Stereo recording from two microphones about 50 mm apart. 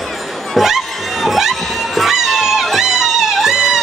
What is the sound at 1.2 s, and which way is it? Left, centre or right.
Music, centre.